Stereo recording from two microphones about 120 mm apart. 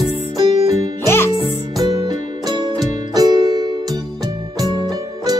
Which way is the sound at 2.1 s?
35° right (ahead or behind).